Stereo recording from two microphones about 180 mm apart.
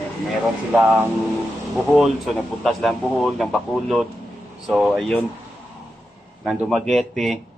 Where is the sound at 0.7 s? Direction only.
5° right (ahead or behind).